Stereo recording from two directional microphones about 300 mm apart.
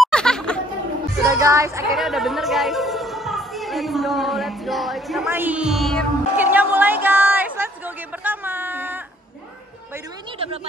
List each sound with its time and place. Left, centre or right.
0.0 s a sound: centre
1.2 s a woman's voice: centre
10.4 s speech: centre